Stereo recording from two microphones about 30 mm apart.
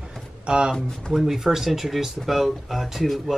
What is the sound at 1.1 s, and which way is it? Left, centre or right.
Speech, centre.